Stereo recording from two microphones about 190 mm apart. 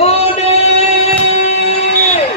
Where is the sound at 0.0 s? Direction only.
35° left (ahead or behind).